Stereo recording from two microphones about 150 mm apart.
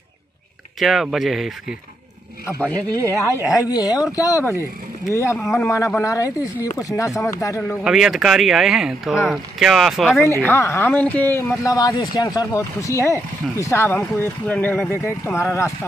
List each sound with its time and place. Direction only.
0.7 s speech: centre (ahead or behind)
2.7 s speech: 20° right (ahead or behind)
3.4 s a man's voice: 25° left (ahead or behind)
5.4 s speech: centre (ahead or behind)
5.9 s a man's voice: 20° left (ahead or behind)
7.8 s speech: 5° right (ahead or behind)
10.4 s a man's voice: 20° left (ahead or behind)